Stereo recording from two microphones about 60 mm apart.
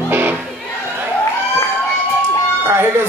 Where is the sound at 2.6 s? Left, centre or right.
Right.